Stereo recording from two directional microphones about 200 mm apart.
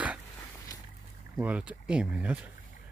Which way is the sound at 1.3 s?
5° right (ahead or behind).